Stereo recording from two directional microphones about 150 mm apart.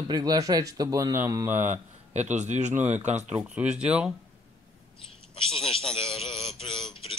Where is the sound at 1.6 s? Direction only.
50° right (ahead or behind).